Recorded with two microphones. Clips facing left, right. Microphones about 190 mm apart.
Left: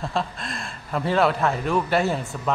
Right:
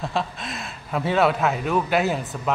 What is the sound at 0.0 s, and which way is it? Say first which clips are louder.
A man's voice: even; centre (ahead or behind).